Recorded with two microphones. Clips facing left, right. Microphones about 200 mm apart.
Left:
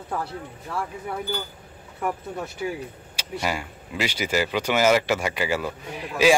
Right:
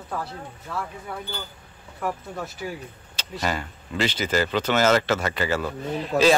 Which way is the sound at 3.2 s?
10° left (ahead or behind).